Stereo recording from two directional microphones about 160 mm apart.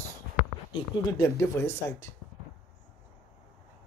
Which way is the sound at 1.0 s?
20° left (ahead or behind).